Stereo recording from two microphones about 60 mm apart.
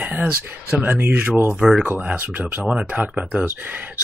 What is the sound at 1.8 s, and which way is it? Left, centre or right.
Speech, right.